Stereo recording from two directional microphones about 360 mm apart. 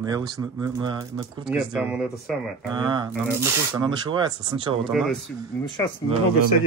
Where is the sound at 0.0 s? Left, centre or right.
Centre.